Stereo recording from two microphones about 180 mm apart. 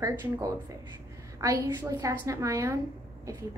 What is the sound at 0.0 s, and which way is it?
A woman's voice, 20° right (ahead or behind).